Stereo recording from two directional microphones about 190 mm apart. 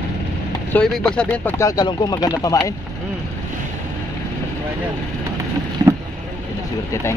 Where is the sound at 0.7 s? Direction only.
5° left (ahead or behind).